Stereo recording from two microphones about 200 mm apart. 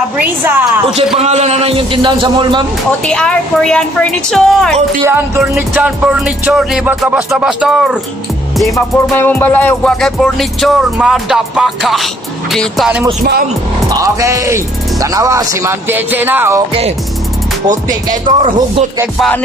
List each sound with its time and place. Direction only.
0.2 s speech: 10° right (ahead or behind)
1.1 s a man's voice: 35° right (ahead or behind)
3.1 s music: 5° left (ahead or behind)
9.1 s music: 10° left (ahead or behind)
13.9 s speech: 15° right (ahead or behind)
17.6 s music: 40° right (ahead or behind)
18.2 s a man's voice: 25° right (ahead or behind)
19.1 s music: 5° left (ahead or behind)